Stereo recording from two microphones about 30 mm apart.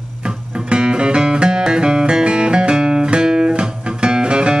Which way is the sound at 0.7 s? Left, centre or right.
Right.